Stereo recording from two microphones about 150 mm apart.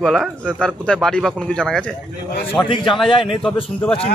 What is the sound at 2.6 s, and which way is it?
Speech, 35° left (ahead or behind).